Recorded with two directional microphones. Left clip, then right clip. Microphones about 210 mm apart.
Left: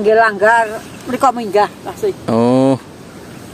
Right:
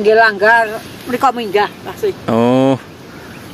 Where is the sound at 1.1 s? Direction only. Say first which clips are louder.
Even; 50° left (ahead or behind).